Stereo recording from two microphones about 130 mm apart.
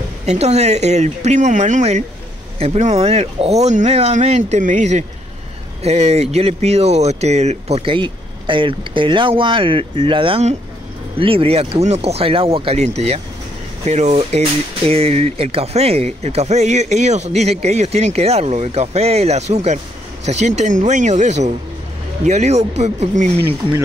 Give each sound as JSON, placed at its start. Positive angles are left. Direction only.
{"t": 0.3, "sound": "speech", "side_deg": -55}